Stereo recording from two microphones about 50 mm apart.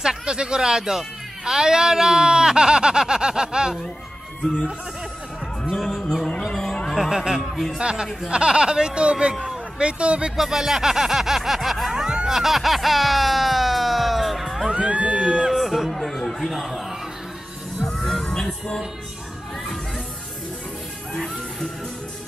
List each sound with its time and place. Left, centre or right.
0.0 s speech: centre
5.7 s speech: centre
6.5 s a sound: centre
6.9 s speech: centre
7.4 s speech: centre
7.7 s a man's voice: centre
10.3 s speech: centre
12.1 s music: centre
12.4 s music: centre
14.7 s a sound: right
15.5 s chatter: centre
16.5 s music: centre
17.8 s music: centre
21.1 s music: centre